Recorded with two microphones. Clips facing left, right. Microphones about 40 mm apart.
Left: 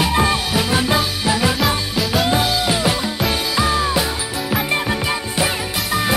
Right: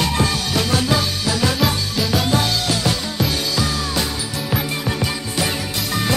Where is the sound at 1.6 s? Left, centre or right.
Centre.